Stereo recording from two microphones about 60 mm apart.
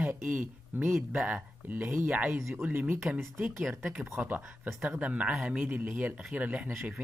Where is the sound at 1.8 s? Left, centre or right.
Right.